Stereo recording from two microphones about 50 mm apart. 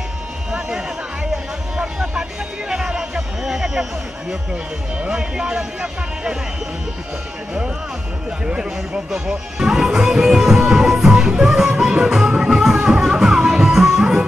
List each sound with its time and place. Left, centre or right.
0.5 s music: centre
1.8 s vehicle: centre
2.9 s a sound: centre
5.0 s speech: centre
8.5 s speech: centre
11.0 s music: centre